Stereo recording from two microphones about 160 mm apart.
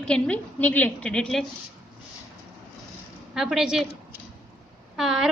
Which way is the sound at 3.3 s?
5° right (ahead or behind).